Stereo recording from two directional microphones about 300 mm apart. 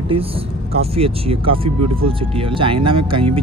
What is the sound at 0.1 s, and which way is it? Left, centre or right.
Speech, centre.